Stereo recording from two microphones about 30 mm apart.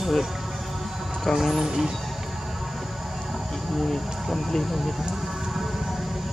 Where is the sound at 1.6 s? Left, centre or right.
Centre.